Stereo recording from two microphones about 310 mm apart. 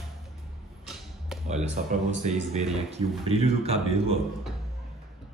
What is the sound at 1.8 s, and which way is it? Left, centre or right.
Speech, right.